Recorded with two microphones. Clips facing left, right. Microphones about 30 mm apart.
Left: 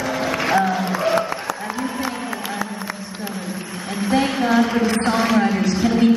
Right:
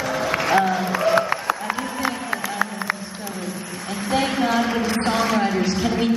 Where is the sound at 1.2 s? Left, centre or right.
Right.